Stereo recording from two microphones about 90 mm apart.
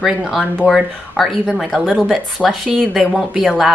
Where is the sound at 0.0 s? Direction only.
5° right (ahead or behind).